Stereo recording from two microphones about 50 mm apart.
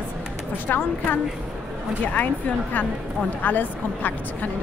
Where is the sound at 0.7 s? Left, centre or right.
Left.